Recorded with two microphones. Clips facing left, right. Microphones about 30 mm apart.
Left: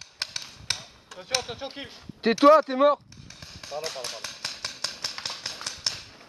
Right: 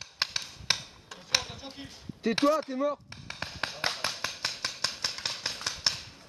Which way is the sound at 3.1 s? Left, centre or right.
Right.